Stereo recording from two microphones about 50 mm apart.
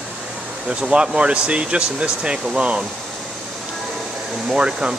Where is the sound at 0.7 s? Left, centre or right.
Centre.